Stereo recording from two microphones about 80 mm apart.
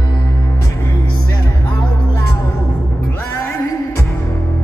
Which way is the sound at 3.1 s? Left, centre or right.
Left.